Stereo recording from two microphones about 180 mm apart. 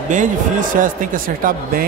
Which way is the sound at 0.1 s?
45° right (ahead or behind).